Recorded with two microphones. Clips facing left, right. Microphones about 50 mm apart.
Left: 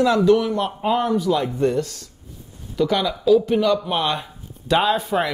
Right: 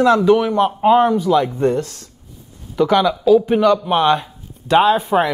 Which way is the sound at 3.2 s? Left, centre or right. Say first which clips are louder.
Even; centre.